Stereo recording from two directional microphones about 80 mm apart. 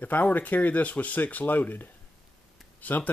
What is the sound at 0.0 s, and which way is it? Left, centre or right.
Speech, left.